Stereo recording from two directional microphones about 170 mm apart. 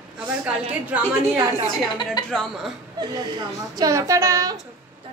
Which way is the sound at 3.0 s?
25° right (ahead or behind).